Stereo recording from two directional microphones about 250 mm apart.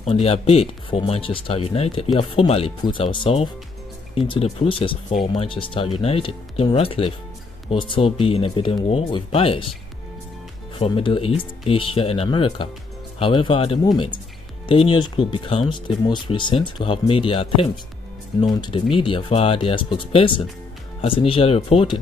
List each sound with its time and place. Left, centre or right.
0.0 s speech: left
10.8 s speech: left